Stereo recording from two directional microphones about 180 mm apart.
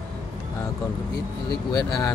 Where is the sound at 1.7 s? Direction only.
20° left (ahead or behind).